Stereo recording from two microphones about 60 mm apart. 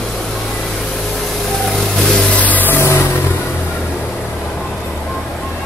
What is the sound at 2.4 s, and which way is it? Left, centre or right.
Vehicle, left.